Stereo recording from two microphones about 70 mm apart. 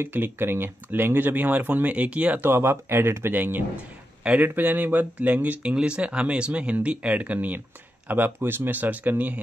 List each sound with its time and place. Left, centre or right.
0.0 s speech: right
2.4 s speech: right